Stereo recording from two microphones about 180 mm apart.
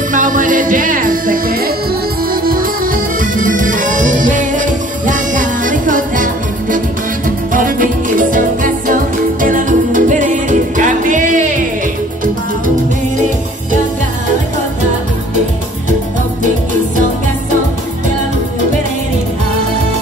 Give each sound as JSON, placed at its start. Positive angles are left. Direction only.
{"t": 0.1, "sound": "music", "side_deg": -45}